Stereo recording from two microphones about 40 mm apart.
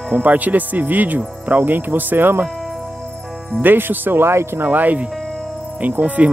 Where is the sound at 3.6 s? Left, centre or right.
Right.